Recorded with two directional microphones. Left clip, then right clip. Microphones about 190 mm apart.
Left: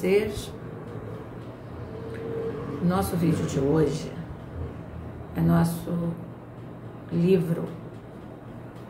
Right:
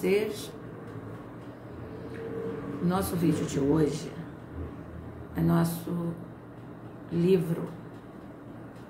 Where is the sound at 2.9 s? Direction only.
5° right (ahead or behind).